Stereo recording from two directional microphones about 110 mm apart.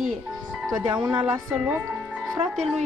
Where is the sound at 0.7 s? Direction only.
40° right (ahead or behind).